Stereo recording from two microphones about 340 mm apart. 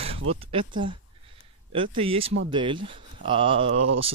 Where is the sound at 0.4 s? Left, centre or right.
Centre.